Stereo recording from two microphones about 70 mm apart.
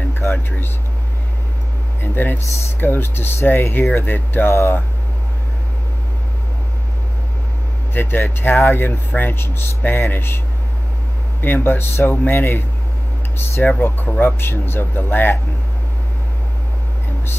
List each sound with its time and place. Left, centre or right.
0.2 s speech: left
2.0 s speech: left
4.5 s speech: left
7.9 s speech: left
11.4 s speech: left
13.7 s speech: left